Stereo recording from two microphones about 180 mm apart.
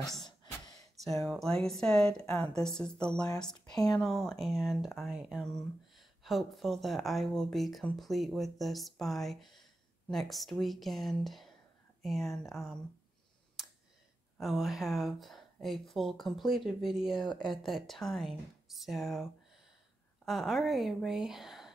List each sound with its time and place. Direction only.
0.1 s gasp: centre (ahead or behind)
0.9 s speech: centre (ahead or behind)
14.4 s speech: centre (ahead or behind)
17.3 s speech: 25° left (ahead or behind)
17.6 s speech: centre (ahead or behind)
20.2 s speech: centre (ahead or behind)